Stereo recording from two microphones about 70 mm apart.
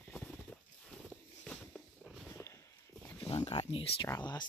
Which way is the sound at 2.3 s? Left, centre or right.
Left.